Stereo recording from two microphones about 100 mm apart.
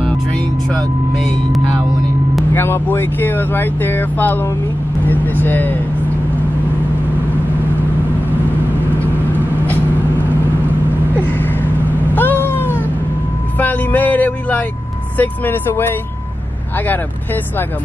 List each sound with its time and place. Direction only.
0.0 s vehicle: 10° left (ahead or behind)
2.5 s speech: 20° left (ahead or behind)
11.2 s vehicle: 20° left (ahead or behind)
12.1 s cat: 20° left (ahead or behind)
13.6 s vehicle: 15° left (ahead or behind)
15.1 s speech: 20° left (ahead or behind)